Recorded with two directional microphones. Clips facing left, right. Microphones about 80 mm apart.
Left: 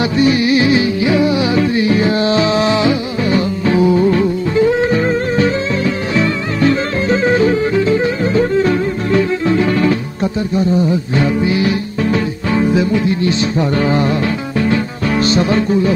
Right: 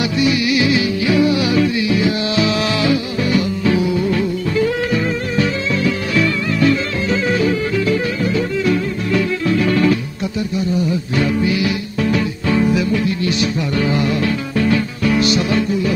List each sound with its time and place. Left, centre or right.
0.0 s music: left
12.7 s music: left
15.1 s music: left